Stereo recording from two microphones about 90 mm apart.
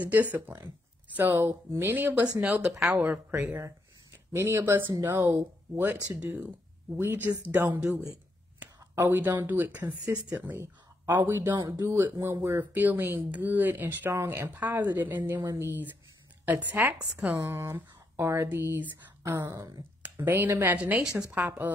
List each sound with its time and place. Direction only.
0.0 s speech: 20° right (ahead or behind)
2.4 s speech: 10° right (ahead or behind)
8.0 s a sound: 15° right (ahead or behind)
8.9 s speech: 25° right (ahead or behind)
12.7 s speech: 20° right (ahead or behind)
19.5 s speech: 40° right (ahead or behind)
20.0 s speech: 20° right (ahead or behind)